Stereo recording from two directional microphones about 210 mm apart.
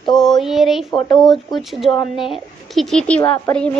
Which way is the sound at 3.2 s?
15° left (ahead or behind).